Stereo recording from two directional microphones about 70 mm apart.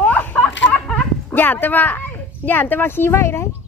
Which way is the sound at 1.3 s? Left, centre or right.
Left.